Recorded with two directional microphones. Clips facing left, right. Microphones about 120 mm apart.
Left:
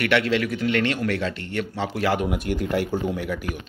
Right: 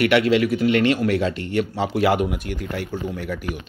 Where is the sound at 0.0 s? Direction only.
10° right (ahead or behind).